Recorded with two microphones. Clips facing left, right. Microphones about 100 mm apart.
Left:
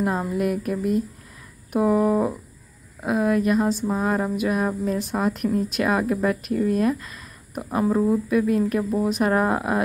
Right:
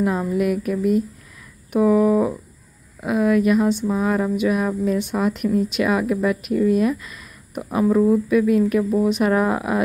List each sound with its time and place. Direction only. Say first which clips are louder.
0.0 s speech: right 3 dB; centre (ahead or behind)
3.3 s speech: right 3 dB; 35° left (ahead or behind)
3.8 s speech: right 2 dB; 5° left (ahead or behind)